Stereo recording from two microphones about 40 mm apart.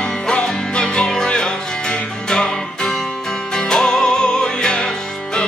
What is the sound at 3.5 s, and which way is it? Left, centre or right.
Music, centre.